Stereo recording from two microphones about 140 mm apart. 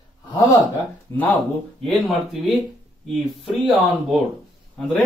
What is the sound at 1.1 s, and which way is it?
Speech, 20° left (ahead or behind).